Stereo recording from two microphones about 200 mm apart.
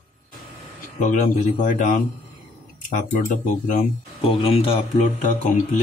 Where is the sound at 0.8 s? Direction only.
40° left (ahead or behind).